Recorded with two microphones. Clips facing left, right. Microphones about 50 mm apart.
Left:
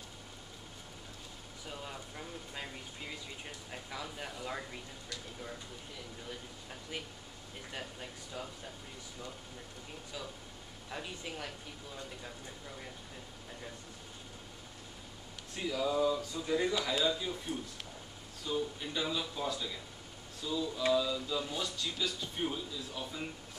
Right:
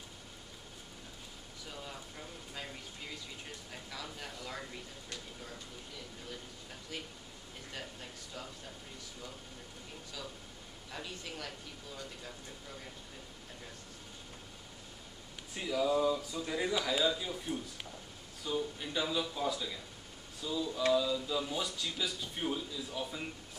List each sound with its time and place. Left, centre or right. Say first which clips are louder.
1.7 s a sound: left 2 dB; centre
3.7 s speech: left 3 dB; centre
7.7 s speech: left 2 dB; centre
10.9 s speech: left 2 dB; centre
15.5 s speech: right 2 dB; centre